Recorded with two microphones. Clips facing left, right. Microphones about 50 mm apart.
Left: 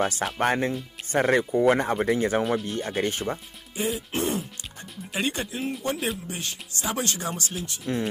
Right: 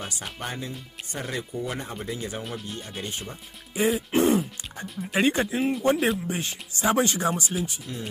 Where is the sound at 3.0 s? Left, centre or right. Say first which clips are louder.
Left 8 dB; left.